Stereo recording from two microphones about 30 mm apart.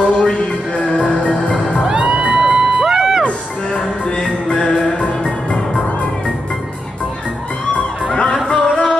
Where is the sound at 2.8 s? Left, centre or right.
Centre.